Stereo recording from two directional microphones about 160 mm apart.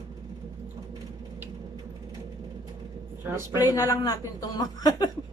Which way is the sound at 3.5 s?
20° left (ahead or behind).